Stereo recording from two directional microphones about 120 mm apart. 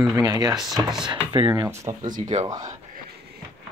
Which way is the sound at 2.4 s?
30° right (ahead or behind).